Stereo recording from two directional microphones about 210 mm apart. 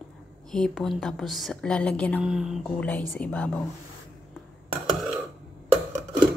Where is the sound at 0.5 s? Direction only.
Centre (ahead or behind).